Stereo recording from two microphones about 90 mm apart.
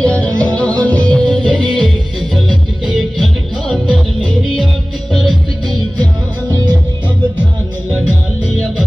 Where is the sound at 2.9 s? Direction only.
Centre (ahead or behind).